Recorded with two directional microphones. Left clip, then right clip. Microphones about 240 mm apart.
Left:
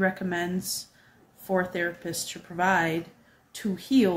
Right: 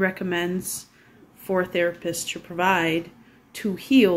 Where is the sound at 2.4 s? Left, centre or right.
Centre.